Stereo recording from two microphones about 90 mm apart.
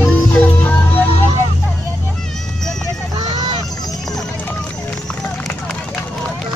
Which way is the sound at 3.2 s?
55° right (ahead or behind).